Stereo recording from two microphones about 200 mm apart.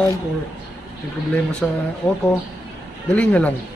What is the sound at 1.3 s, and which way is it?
Speech, 5° left (ahead or behind).